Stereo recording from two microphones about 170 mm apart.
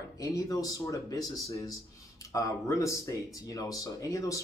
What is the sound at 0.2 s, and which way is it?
Speech, 20° left (ahead or behind).